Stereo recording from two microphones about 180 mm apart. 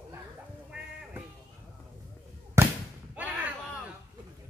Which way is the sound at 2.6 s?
15° right (ahead or behind).